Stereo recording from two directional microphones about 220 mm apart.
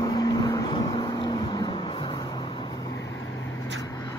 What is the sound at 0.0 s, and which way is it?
Vehicle, 20° left (ahead or behind).